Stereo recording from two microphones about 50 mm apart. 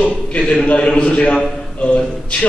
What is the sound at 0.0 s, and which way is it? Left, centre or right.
A man's voice, left.